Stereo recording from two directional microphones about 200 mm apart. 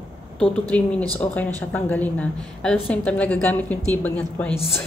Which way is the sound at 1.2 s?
10° left (ahead or behind).